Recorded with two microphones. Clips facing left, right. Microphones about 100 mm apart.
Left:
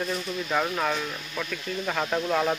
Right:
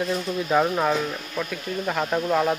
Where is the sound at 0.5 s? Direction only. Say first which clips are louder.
Right 6 dB; 15° right (ahead or behind).